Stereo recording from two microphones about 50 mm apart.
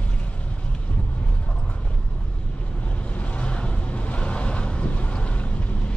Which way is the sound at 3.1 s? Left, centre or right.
Left.